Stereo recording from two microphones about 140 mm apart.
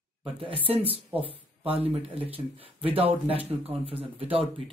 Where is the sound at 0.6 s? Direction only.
40° right (ahead or behind).